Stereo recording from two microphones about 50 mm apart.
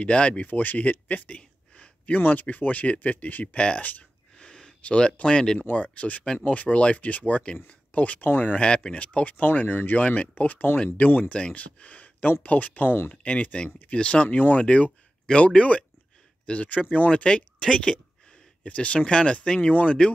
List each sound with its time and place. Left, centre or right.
0.0 s speech: left
0.4 s a man's voice: left
4.4 s a sound: centre
5.2 s speech: centre
5.7 s speech: left
8.5 s speech: centre; by 13.0 s left
13.2 s speech: left